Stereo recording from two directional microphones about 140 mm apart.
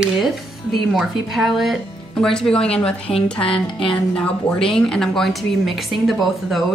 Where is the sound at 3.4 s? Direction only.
40° left (ahead or behind).